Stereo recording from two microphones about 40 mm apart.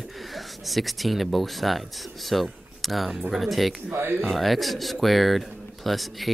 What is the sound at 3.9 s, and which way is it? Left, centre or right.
Speech, right.